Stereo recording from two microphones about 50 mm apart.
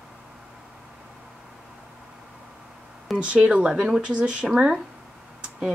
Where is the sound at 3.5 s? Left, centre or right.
Centre.